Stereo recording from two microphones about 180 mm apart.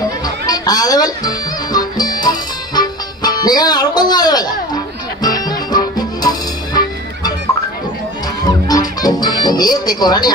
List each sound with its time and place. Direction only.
0.2 s music: 20° left (ahead or behind)
8.6 s speech: 20° left (ahead or behind)